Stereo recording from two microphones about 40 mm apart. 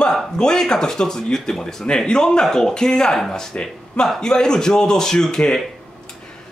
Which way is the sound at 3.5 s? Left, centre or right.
Left.